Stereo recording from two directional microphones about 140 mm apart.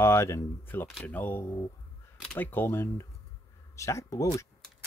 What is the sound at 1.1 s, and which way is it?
Speech, 15° left (ahead or behind).